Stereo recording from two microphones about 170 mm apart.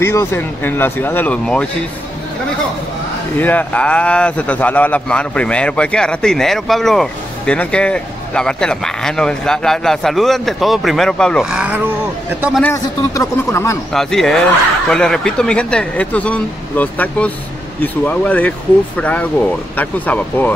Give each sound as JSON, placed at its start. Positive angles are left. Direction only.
{"t": 0.0, "sound": "speech", "side_deg": 15}
{"t": 3.3, "sound": "a man's voice", "side_deg": 10}
{"t": 12.3, "sound": "a man's voice", "side_deg": -10}
{"t": 12.7, "sound": "speech", "side_deg": 20}
{"t": 13.9, "sound": "a man's voice", "side_deg": 5}